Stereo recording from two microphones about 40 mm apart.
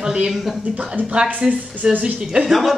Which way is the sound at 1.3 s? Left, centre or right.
Right.